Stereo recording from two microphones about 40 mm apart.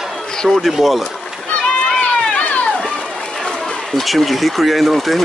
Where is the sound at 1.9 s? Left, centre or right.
Left.